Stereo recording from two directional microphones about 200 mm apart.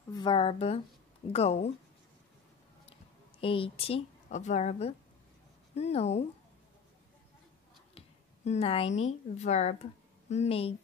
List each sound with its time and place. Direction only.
0.1 s speech: 25° left (ahead or behind)
2.9 s speech: 25° left (ahead or behind)
8.5 s speech: 30° left (ahead or behind)